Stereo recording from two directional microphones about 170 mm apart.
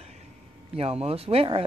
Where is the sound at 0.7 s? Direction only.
35° right (ahead or behind).